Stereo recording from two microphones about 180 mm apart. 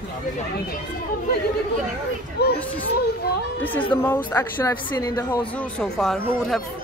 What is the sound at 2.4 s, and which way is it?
Speech, 65° left (ahead or behind).